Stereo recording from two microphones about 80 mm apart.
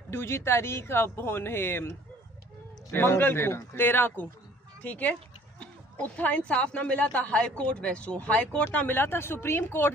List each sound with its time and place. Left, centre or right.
0.1 s a man's voice: left